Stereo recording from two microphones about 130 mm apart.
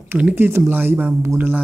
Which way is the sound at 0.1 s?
10° right (ahead or behind).